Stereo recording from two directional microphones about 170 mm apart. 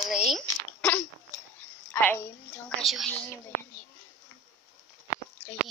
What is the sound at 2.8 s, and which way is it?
Speech, centre (ahead or behind).